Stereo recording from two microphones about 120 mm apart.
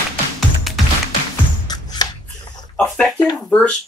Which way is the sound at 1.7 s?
35° left (ahead or behind).